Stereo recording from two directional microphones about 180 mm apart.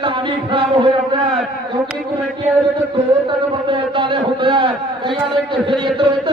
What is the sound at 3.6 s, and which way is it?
A man's voice, 25° right (ahead or behind).